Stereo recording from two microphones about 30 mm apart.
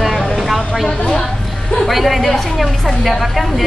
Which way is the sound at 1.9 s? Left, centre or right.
Centre.